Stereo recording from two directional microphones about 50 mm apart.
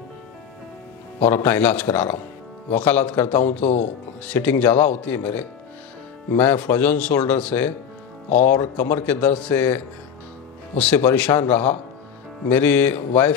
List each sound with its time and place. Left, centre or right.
1.2 s speech: left
11.0 s speech: left